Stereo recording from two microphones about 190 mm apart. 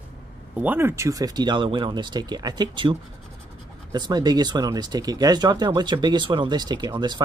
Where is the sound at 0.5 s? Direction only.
10° right (ahead or behind).